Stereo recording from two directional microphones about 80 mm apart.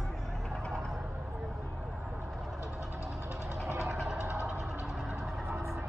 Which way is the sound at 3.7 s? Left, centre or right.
Right.